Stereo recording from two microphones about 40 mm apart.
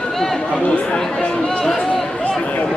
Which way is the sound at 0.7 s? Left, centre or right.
Left.